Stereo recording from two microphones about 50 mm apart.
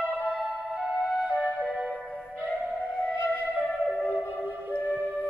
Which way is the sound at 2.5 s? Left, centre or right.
Right.